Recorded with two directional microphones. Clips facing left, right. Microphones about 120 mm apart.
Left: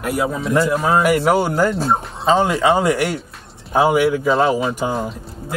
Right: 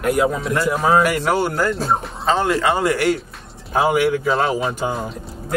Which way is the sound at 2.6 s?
15° left (ahead or behind).